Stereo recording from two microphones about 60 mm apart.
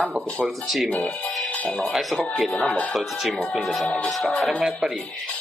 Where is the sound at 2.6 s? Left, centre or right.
Centre.